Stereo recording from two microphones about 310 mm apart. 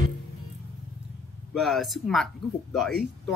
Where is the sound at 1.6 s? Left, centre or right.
Centre.